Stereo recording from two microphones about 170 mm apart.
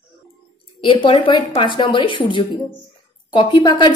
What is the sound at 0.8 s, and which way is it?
Speech, 30° left (ahead or behind).